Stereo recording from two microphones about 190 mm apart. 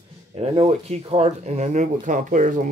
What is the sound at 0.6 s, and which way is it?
Speech, 35° right (ahead or behind).